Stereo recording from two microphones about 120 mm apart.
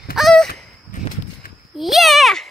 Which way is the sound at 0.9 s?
90° left.